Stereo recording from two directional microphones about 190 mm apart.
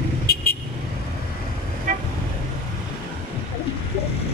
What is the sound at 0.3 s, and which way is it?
Vehicle, 55° left (ahead or behind).